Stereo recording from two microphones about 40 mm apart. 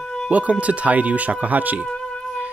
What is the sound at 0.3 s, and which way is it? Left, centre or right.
Speech, right.